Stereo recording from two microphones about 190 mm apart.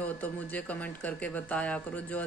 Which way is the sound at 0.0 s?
10° left (ahead or behind).